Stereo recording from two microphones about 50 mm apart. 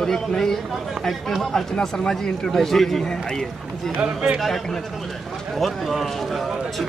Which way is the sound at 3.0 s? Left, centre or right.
Centre.